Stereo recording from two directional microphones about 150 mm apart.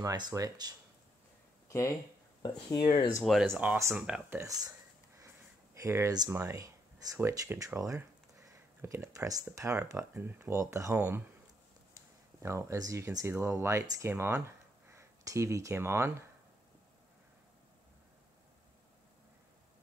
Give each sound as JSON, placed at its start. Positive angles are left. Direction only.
{"t": 0.0, "sound": "speech", "side_deg": -25}
{"t": 1.7, "sound": "speech", "side_deg": 20}
{"t": 2.4, "sound": "speech", "side_deg": 30}
{"t": 3.4, "sound": "speech", "side_deg": -15}
{"t": 4.4, "sound": "speech", "side_deg": -25}
{"t": 5.8, "sound": "speech", "side_deg": -20}
{"t": 12.4, "sound": "speech", "side_deg": -20}